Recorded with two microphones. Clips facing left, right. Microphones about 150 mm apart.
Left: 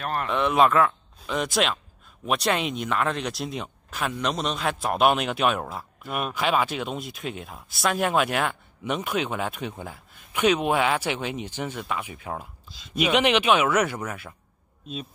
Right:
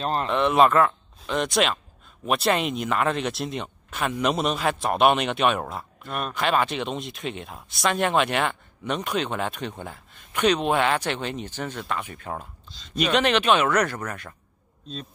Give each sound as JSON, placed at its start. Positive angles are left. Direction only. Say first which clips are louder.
{"t": 0.0, "sound": "a man's voice", "louder": "right 3 dB", "side_deg": -25}
{"t": 0.3, "sound": "speech", "louder": "right 1 dB", "side_deg": 0}